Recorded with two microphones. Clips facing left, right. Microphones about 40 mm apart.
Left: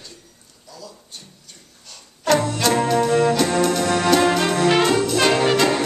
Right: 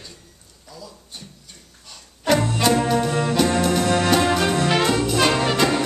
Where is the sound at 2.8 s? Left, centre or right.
Centre.